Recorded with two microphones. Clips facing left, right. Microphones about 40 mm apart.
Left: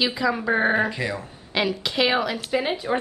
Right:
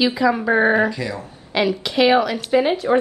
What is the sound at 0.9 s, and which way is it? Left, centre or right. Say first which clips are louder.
Speech: right 2 dB; left.